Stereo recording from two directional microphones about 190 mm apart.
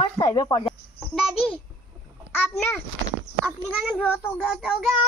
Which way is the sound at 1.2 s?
Centre (ahead or behind).